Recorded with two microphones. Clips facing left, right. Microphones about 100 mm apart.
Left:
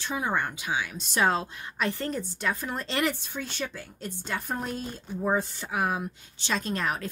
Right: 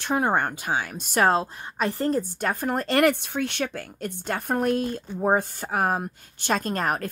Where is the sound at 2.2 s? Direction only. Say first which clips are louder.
Right 5 dB; 55° right (ahead or behind).